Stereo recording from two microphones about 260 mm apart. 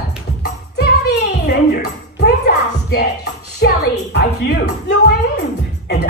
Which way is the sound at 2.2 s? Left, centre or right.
Left.